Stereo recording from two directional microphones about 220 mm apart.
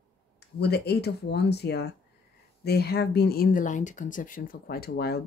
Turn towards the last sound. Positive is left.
turn(degrees=45)  # may be behind; listen again after turning